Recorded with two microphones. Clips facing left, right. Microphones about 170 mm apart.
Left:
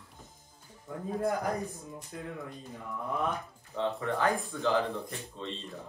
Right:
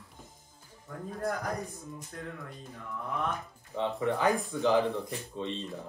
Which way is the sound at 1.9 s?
5° left (ahead or behind).